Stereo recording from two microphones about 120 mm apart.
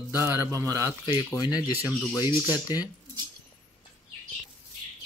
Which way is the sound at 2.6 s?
35° left (ahead or behind).